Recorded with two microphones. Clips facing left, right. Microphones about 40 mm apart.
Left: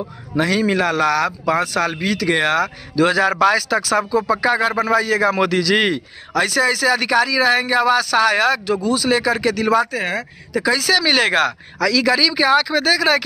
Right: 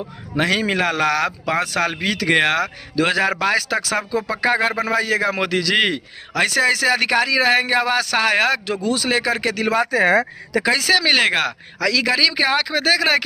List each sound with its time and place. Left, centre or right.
0.4 s a man's voice: right
5.4 s speech: centre
6.4 s a man's voice: right
9.1 s a man's voice: right
10.5 s speech: right
10.9 s speech: centre